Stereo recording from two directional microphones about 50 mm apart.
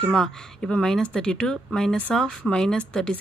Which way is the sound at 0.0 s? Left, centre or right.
Centre.